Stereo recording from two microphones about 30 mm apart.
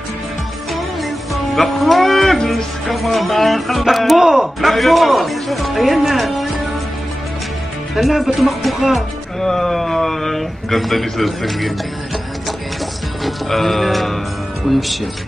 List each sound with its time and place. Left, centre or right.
0.7 s music: centre
2.5 s speech: centre
4.2 s speech: centre
4.6 s speech: centre
7.9 s speech: centre
9.4 s a man's voice: centre
13.2 s speech: centre